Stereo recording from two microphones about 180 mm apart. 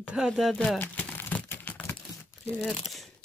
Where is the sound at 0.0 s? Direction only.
5° right (ahead or behind).